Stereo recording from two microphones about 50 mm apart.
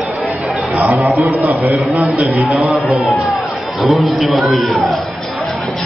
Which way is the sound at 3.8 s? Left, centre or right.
Centre.